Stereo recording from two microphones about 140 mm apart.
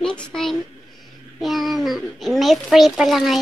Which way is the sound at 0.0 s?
5° left (ahead or behind).